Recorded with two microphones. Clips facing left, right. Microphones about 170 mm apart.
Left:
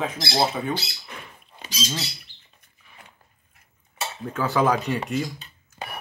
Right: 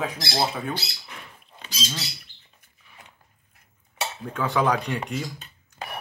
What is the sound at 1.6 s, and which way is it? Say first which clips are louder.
Speech: left 3 dB; 15° left (ahead or behind).